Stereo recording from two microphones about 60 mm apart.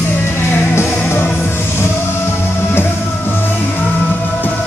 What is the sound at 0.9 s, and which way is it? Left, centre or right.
Music, left.